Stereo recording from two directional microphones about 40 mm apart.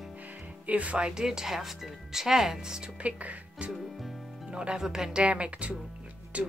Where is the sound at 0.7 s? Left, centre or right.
Right.